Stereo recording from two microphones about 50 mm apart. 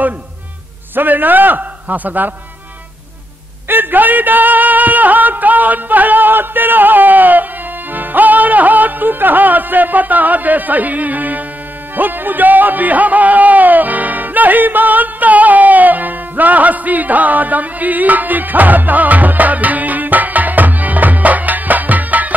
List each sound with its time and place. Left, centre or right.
0.9 s a man's voice: right
3.6 s speech: right
7.9 s music: right